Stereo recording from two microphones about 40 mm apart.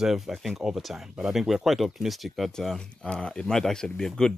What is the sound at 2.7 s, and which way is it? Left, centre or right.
Speech, left.